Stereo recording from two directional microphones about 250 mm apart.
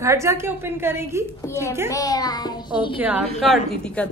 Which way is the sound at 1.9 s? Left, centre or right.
Centre.